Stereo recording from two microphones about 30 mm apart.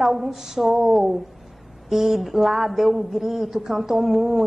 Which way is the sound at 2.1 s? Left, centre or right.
Centre.